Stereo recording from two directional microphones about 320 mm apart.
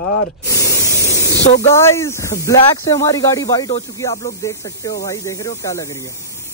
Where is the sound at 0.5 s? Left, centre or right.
Centre.